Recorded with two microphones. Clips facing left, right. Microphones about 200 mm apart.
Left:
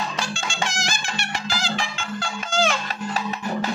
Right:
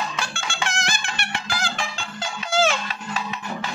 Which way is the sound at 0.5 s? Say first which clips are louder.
Even; 60° right (ahead or behind).